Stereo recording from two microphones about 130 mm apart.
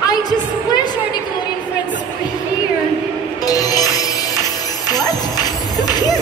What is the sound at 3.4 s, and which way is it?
Music, 30° left (ahead or behind).